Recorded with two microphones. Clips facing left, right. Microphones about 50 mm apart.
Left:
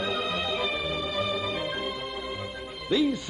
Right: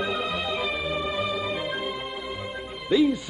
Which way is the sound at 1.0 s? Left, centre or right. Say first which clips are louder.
Right 2 dB; centre.